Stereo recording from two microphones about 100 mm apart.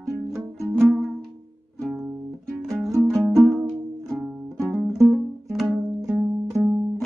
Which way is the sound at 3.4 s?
25° right (ahead or behind).